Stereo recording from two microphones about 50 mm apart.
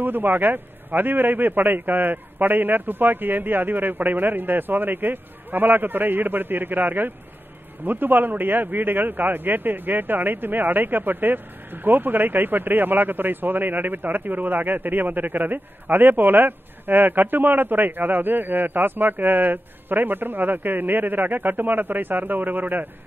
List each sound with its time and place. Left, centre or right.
0.0 s a man's voice: right